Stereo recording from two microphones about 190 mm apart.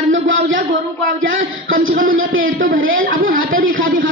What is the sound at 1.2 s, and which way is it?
A man's voice, 90° right.